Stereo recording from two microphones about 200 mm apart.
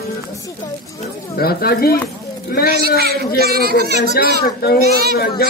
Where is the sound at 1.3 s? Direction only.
50° left (ahead or behind).